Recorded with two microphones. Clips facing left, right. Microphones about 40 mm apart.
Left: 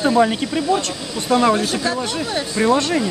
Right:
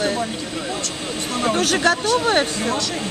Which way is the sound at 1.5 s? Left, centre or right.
Right.